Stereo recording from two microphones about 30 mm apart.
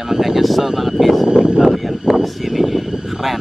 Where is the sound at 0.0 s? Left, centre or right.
Centre.